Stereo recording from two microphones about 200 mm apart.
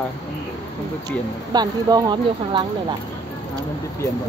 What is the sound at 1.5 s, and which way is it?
Speech, 20° right (ahead or behind).